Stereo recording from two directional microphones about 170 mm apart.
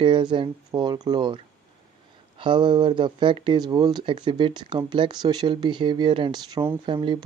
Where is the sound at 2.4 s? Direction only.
25° right (ahead or behind).